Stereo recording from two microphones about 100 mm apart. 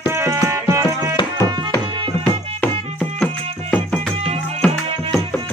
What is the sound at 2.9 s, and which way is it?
Music, 10° left (ahead or behind).